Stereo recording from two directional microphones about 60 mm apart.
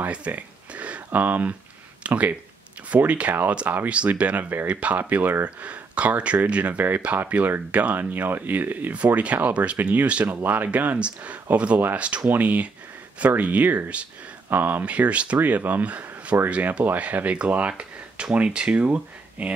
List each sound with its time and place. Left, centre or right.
0.0 s a sound: right
2.0 s speech: right
8.9 s speech: right
10.2 s speech: right